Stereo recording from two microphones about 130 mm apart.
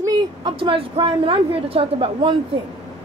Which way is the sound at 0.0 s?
30° right (ahead or behind).